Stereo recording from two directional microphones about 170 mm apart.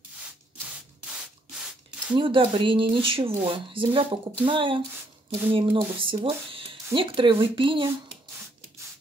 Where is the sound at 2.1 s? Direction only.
30° right (ahead or behind).